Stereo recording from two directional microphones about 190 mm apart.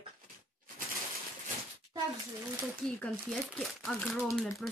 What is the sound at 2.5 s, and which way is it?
Speech, centre (ahead or behind).